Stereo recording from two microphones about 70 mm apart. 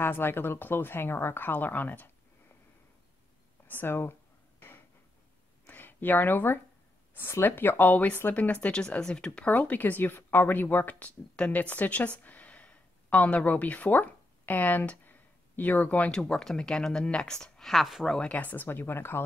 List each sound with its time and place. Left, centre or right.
0.0 s a woman's voice: left
3.6 s a sound: left
5.7 s a woman's voice: left
16.1 s speech: centre
18.3 s a woman's voice: left